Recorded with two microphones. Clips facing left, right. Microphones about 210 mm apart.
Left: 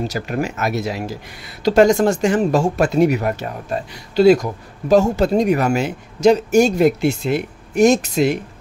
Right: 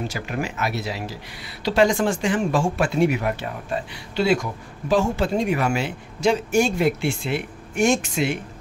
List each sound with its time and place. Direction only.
0.1 s speech: 45° left (ahead or behind)